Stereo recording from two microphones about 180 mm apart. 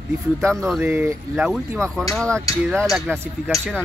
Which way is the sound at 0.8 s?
15° right (ahead or behind).